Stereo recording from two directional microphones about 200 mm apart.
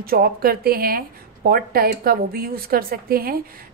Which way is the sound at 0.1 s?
50° right (ahead or behind).